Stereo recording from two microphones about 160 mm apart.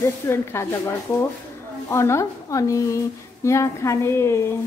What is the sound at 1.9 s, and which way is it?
A woman's voice, 15° left (ahead or behind).